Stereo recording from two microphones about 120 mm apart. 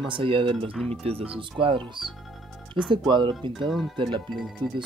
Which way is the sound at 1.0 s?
55° right (ahead or behind).